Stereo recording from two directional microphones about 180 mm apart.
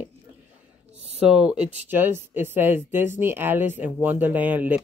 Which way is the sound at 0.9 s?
35° right (ahead or behind).